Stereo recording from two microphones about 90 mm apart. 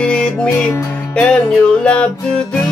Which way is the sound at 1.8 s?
10° left (ahead or behind).